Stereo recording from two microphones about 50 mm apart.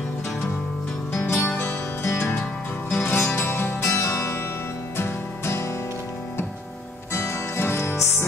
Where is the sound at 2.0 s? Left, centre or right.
Left.